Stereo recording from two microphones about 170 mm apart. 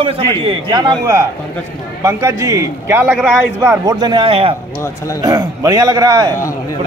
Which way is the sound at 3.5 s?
20° right (ahead or behind).